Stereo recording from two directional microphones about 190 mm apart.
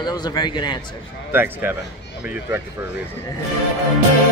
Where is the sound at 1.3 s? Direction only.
10° right (ahead or behind).